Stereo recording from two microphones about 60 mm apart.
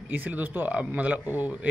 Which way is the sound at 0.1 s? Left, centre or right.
Right.